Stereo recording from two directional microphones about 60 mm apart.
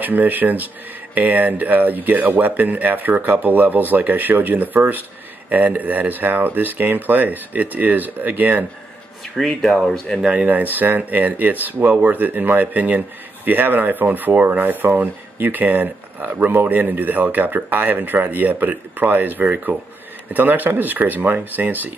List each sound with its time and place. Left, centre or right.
0.0 s speech: right
9.4 s speech: centre
10.4 s speech: right